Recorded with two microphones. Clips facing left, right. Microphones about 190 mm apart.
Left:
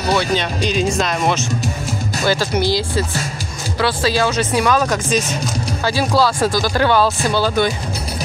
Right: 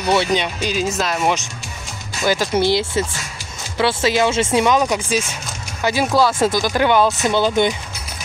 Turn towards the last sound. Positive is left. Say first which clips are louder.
# right 1 dB
turn(degrees=-20)  # may be behind; listen again after turning